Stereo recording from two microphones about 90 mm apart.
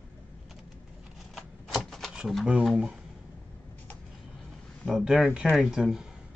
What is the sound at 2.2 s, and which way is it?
Speech, 5° right (ahead or behind).